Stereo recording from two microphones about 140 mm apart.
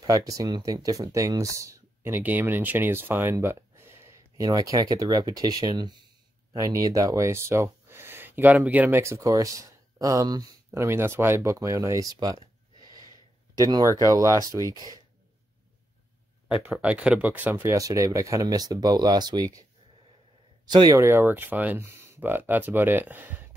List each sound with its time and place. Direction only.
0.0 s speech: 25° right (ahead or behind)
13.6 s speech: 25° right (ahead or behind)
16.6 s speech: 10° right (ahead or behind); by 19.6 s 30° right (ahead or behind)
20.6 s speech: 30° right (ahead or behind)
20.9 s speech: 20° right (ahead or behind)